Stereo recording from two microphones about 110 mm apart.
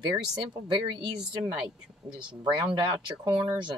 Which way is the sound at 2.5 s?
45° right (ahead or behind).